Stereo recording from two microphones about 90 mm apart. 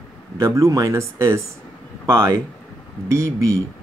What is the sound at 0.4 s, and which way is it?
Speech, 35° right (ahead or behind).